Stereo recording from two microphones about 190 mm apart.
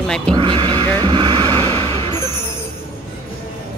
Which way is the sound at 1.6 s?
15° left (ahead or behind).